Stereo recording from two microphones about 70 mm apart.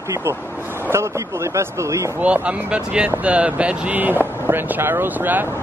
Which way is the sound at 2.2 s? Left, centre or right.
Centre.